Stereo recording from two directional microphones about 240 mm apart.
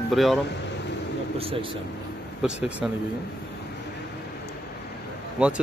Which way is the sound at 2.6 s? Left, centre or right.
Centre.